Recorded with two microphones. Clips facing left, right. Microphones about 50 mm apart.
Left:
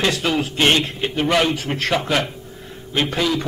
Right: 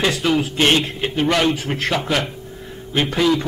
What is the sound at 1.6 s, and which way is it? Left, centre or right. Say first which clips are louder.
A man's voice: even; centre.